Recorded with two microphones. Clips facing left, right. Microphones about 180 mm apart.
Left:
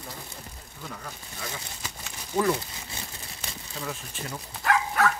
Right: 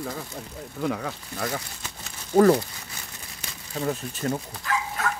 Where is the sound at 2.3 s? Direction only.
45° right (ahead or behind).